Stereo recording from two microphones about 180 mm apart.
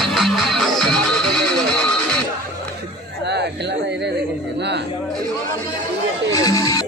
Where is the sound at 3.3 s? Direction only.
70° right (ahead or behind).